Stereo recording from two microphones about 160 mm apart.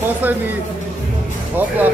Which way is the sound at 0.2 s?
10° right (ahead or behind).